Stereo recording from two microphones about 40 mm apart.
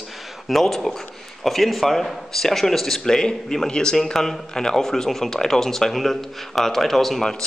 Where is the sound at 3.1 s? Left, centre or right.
Centre.